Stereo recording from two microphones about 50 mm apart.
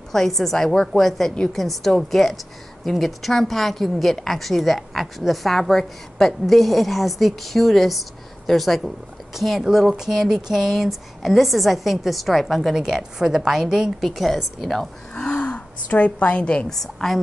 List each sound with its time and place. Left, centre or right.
0.1 s a woman's voice: centre
14.0 s a woman's voice: centre
15.4 s a woman's voice: left
16.6 s a woman's voice: centre